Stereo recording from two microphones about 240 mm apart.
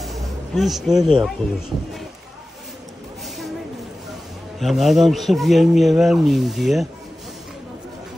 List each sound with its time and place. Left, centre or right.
0.0 s a sound: centre
0.9 s speech: right
4.6 s speech: centre